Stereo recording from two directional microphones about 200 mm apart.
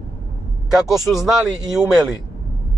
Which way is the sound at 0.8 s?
Centre (ahead or behind).